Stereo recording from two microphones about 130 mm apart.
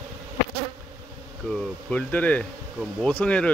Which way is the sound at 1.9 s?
10° left (ahead or behind).